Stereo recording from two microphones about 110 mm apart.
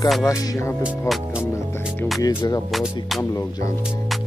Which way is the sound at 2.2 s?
30° left (ahead or behind).